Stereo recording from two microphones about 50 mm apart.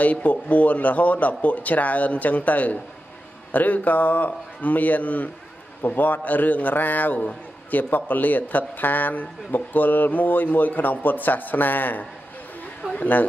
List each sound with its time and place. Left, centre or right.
0.0 s a man's voice: left